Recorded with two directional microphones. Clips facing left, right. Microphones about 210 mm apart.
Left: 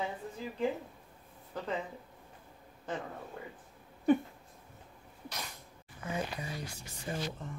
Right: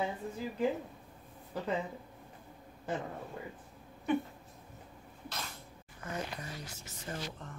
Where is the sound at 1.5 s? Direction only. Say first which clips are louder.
Right 2 dB; 10° right (ahead or behind).